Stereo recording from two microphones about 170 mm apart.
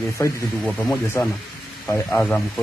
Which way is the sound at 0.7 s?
Centre (ahead or behind).